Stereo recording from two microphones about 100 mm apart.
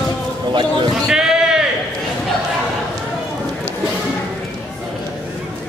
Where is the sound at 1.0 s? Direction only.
5° right (ahead or behind).